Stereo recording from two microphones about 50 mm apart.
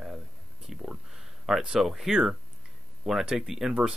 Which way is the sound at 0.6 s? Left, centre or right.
Centre.